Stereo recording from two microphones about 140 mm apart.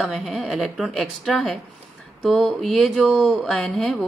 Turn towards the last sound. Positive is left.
turn(degrees=0)  # may be behind; listen again after turning